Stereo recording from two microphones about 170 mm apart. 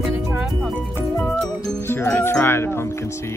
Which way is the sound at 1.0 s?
15° left (ahead or behind).